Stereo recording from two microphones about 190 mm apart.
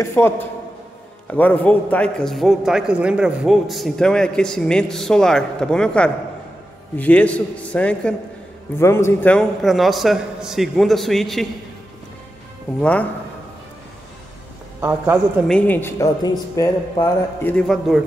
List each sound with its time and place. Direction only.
0.0 s a man's voice: 15° left (ahead or behind)
14.8 s a man's voice: 10° right (ahead or behind)
15.4 s speech: 5° left (ahead or behind)